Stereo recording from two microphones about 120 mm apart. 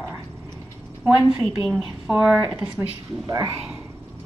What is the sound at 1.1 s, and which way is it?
Speech, 10° right (ahead or behind).